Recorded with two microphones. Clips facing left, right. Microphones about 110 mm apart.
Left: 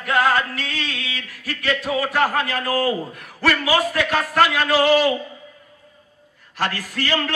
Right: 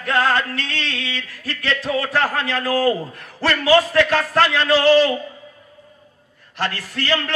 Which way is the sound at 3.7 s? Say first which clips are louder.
Right 5 dB; 10° left (ahead or behind).